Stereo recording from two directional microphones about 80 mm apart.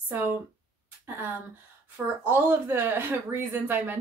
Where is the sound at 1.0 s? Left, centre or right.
Right.